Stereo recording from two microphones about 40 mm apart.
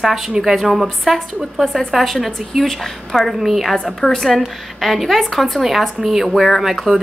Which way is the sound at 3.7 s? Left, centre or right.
Centre.